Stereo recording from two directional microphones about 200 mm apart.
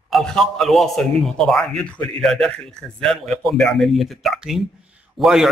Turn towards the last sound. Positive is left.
turn(degrees=0)  # may be behind; listen again after turning